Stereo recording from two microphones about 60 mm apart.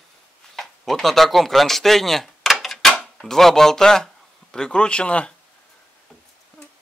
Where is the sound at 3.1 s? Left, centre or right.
Centre.